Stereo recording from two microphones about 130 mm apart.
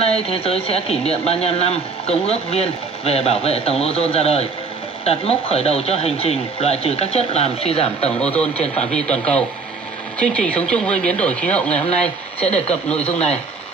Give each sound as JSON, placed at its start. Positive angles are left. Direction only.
{"t": 0.0, "sound": "speech", "side_deg": 50}
{"t": 8.7, "sound": "speech", "side_deg": 10}
{"t": 12.4, "sound": "speech", "side_deg": 55}